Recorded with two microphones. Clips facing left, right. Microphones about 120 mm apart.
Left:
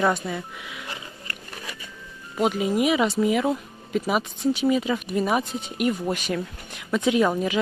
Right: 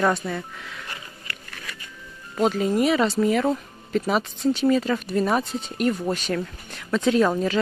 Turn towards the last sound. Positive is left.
turn(degrees=10)  # may be behind; listen again after turning